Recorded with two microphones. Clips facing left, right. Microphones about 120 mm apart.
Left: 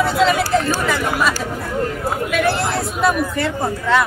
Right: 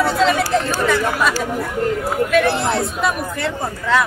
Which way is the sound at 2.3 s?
Centre (ahead or behind).